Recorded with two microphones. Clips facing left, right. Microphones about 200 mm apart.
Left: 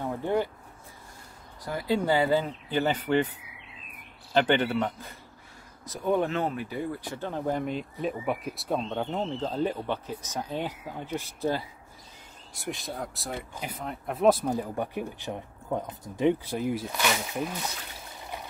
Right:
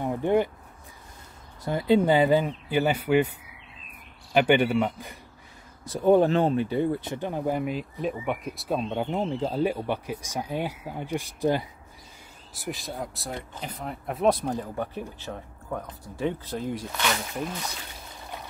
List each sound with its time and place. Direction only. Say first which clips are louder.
0.0 s a sound: right 4 dB; 15° right (ahead or behind)
1.6 s speech: right 6 dB; 25° right (ahead or behind)
5.9 s speech: right 7 dB; 30° right (ahead or behind); by 11.6 s 15° right (ahead or behind)
12.5 s speech: right 1 dB; centre (ahead or behind)